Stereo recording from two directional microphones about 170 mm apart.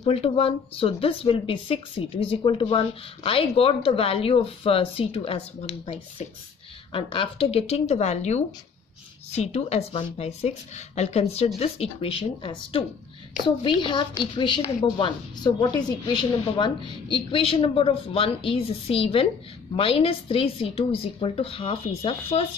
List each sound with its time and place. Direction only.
0.0 s a woman's voice: 35° left (ahead or behind)